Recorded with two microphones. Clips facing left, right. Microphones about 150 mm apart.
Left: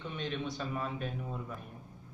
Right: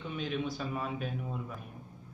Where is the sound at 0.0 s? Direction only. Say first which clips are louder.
Right 2 dB; 5° right (ahead or behind).